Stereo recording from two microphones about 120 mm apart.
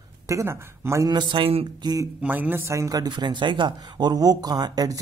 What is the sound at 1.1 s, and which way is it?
Speech, 40° right (ahead or behind).